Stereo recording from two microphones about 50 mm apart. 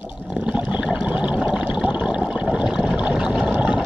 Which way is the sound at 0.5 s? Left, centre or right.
Right.